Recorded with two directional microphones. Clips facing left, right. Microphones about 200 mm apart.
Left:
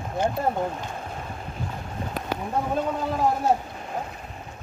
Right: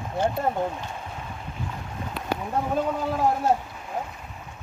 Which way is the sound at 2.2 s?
45° left (ahead or behind).